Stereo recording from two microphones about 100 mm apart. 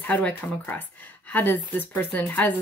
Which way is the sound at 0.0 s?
15° left (ahead or behind).